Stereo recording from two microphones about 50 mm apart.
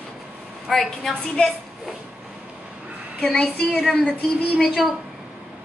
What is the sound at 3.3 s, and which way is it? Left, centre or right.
Speech, left.